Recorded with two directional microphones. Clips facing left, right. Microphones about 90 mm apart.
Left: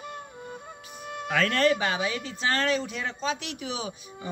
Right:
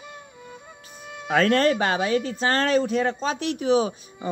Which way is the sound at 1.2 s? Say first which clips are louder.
Right 4 dB; 40° right (ahead or behind).